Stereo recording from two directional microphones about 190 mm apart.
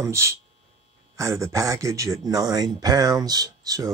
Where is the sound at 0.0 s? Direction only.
15° right (ahead or behind).